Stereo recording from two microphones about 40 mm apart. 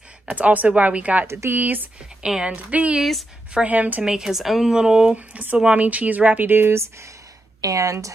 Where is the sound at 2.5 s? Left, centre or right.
Right.